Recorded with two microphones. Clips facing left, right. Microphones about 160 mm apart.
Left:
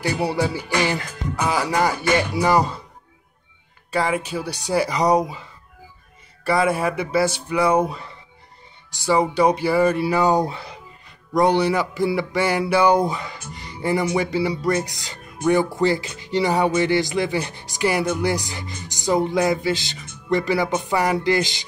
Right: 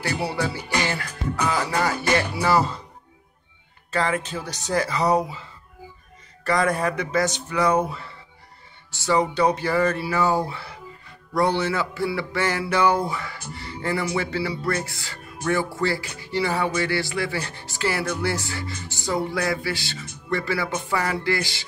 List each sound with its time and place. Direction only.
0.0 s speech: 15° left (ahead or behind)
3.9 s speech: 10° left (ahead or behind)
6.4 s speech: 10° left (ahead or behind)